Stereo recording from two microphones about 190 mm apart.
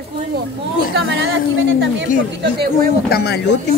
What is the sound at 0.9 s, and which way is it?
Speech, 90° right.